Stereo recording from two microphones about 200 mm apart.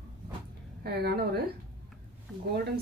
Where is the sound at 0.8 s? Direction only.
55° right (ahead or behind).